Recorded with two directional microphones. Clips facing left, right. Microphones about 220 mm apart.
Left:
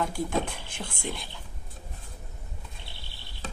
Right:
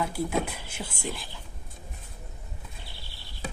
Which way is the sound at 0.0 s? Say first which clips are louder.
Even; 10° right (ahead or behind).